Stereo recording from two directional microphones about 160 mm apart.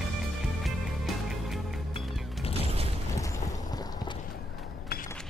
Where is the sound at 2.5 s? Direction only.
40° right (ahead or behind).